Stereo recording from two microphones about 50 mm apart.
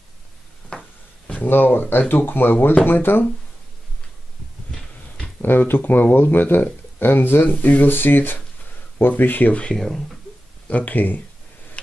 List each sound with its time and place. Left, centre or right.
0.7 s a sound: left
1.5 s speech: left
5.4 s speech: left
9.5 s speech: left
9.8 s speech: centre
10.7 s speech: left